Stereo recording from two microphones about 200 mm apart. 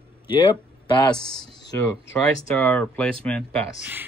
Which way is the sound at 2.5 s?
5° left (ahead or behind).